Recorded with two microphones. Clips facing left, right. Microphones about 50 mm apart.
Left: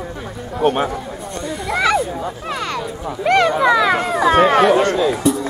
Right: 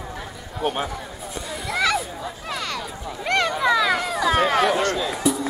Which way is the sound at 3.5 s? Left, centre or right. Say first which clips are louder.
Left 5 dB; left.